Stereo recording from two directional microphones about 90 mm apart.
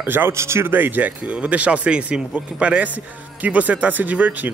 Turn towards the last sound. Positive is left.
turn(degrees=-20)  # may be behind; listen again after turning